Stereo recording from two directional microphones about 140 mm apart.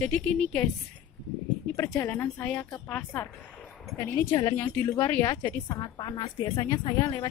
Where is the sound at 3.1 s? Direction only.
15° left (ahead or behind).